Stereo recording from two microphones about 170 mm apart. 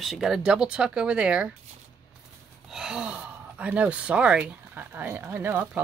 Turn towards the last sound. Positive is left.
turn(degrees=-10)  # may be behind; listen again after turning